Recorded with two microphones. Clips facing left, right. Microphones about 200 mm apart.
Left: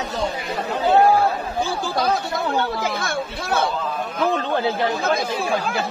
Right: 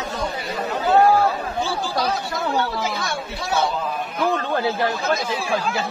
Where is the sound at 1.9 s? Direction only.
55° left (ahead or behind).